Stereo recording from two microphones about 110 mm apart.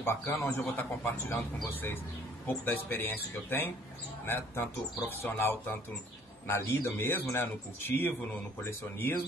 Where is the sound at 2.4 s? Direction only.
20° left (ahead or behind).